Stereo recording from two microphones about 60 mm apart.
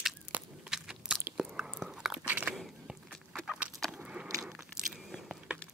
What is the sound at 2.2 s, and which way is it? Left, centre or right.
Biting, right.